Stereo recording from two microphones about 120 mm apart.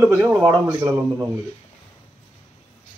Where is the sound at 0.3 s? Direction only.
35° right (ahead or behind).